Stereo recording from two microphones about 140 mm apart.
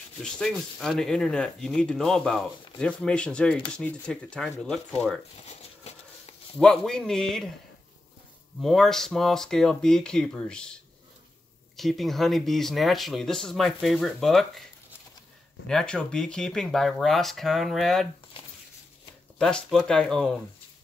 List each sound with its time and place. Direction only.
0.2 s speech: 5° left (ahead or behind)
5.4 s a sound: 50° left (ahead or behind)
6.6 s speech: 5° left (ahead or behind)
8.5 s speech: centre (ahead or behind)
15.6 s speech: 5° left (ahead or behind)
19.3 s speech: 5° left (ahead or behind)